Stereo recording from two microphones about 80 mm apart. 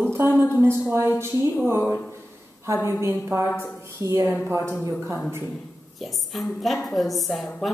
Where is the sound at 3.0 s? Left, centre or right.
Right.